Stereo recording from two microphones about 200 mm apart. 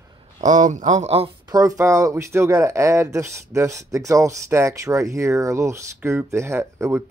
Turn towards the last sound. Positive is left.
turn(degrees=-15)  # may be behind; listen again after turning